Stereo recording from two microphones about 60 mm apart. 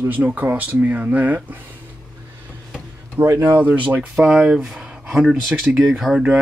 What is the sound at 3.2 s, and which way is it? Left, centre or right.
Speech, right.